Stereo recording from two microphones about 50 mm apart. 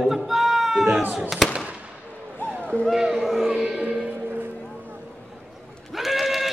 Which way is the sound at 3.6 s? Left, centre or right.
Right.